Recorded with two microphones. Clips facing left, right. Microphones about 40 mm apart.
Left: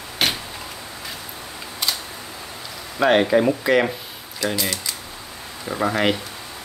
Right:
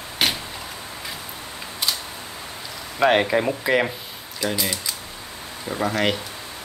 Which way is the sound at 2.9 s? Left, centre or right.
Centre.